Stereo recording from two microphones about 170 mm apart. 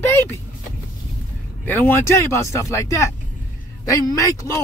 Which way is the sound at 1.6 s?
10° left (ahead or behind).